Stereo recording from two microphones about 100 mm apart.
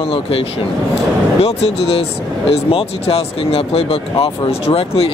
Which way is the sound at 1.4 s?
80° left.